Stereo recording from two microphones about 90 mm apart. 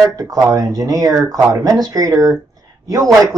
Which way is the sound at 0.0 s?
40° right (ahead or behind).